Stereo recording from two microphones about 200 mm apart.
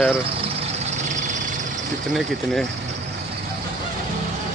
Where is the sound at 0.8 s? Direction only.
35° right (ahead or behind).